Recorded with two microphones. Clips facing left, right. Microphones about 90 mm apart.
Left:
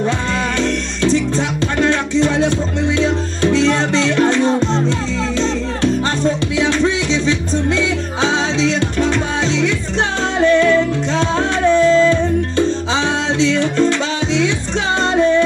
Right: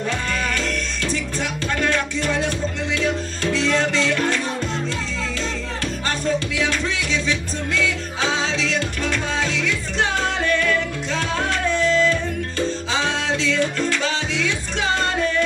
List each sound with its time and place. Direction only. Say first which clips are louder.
0.6 s music: left 7 dB; 25° left (ahead or behind)
6.6 s music: left 7 dB; 20° left (ahead or behind)